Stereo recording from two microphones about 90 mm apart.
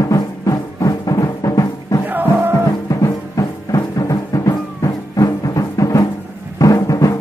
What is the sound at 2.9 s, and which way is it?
Music, 40° left (ahead or behind).